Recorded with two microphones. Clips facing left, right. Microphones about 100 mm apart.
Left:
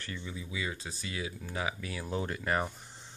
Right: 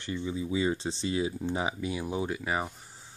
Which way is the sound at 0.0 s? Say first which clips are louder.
Right 9 dB; 20° right (ahead or behind).